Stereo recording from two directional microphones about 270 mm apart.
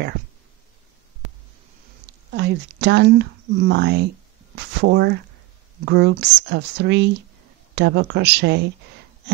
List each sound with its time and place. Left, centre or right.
2.0 s speech: right